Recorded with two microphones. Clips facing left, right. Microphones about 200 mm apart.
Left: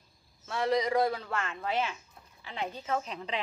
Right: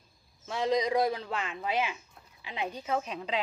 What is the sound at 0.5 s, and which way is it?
Speech, 15° right (ahead or behind).